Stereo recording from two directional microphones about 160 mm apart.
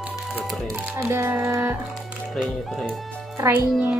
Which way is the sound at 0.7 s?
15° right (ahead or behind).